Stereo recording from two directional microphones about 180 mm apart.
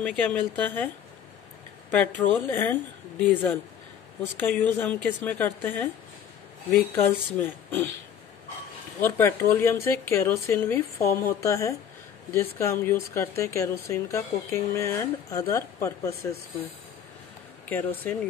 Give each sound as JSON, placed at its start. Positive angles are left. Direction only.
{"t": 0.0, "sound": "speech", "side_deg": 10}
{"t": 1.9, "sound": "speech", "side_deg": 10}
{"t": 9.0, "sound": "speech", "side_deg": 15}
{"t": 17.6, "sound": "speech", "side_deg": 10}